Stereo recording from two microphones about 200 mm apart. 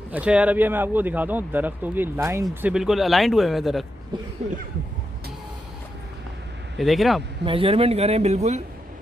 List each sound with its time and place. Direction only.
0.1 s speech: 5° right (ahead or behind)
6.8 s speech: centre (ahead or behind)
7.4 s a man's voice: 25° right (ahead or behind)